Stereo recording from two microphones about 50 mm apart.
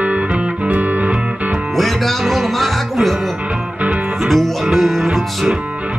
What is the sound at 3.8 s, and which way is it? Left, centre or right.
Music, right.